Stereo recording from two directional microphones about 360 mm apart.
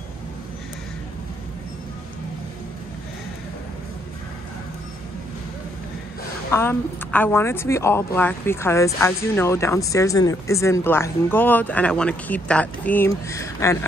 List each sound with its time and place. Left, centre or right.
6.5 s a woman's voice: centre